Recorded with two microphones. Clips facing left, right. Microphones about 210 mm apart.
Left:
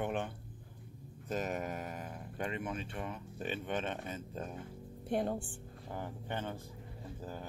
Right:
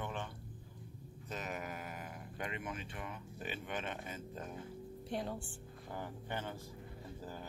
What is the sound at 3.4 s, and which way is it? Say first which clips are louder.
Speech: left 5 dB; 10° right (ahead or behind).